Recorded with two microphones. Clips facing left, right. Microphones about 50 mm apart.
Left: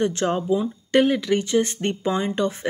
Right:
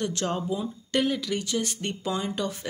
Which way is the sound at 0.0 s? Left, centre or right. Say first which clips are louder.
Left 6 dB; left.